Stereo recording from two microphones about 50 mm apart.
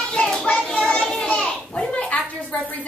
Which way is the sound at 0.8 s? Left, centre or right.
Centre.